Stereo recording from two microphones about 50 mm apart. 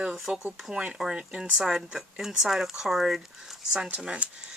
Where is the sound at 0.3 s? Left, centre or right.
Right.